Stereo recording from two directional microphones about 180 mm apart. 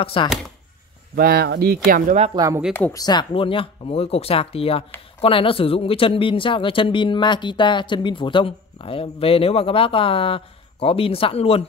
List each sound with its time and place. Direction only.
0.0 s speech: 30° left (ahead or behind)
1.1 s speech: 55° right (ahead or behind)
2.3 s speech: 20° right (ahead or behind)
2.7 s speech: 15° left (ahead or behind); by 11.6 s 30° left (ahead or behind)